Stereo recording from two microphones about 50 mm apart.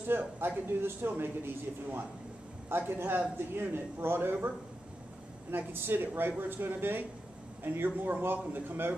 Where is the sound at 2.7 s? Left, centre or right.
Right.